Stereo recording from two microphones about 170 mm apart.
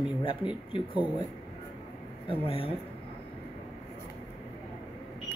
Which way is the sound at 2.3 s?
35° left (ahead or behind).